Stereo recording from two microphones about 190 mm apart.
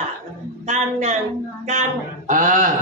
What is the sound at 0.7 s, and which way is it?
A man's voice, 35° right (ahead or behind).